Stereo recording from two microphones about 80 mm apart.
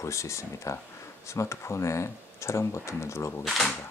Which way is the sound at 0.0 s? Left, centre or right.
Left.